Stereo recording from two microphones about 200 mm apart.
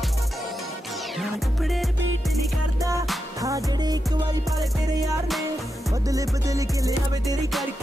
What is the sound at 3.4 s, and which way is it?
Music, 15° right (ahead or behind).